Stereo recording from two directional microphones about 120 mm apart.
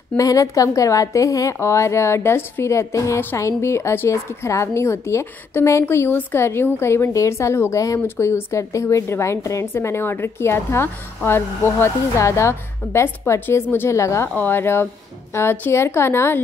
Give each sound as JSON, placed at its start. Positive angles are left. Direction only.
{"t": 0.2, "sound": "a woman's voice", "side_deg": 30}